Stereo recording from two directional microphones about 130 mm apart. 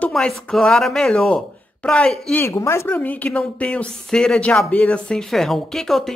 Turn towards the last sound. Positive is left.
turn(degrees=0)  # may be behind; listen again after turning